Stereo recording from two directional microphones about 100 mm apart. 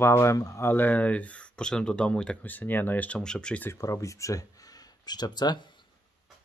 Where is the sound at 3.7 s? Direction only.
30° left (ahead or behind).